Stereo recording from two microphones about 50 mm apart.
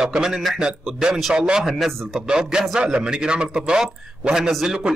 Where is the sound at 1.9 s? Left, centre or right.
Centre.